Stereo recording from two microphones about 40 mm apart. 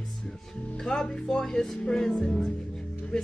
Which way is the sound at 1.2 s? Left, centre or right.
Centre.